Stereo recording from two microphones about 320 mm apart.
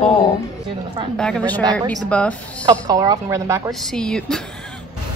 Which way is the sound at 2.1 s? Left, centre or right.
Centre.